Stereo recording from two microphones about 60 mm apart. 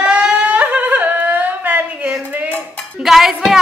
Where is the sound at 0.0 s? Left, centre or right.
Centre.